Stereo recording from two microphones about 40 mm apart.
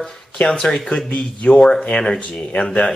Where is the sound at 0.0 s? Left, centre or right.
Left.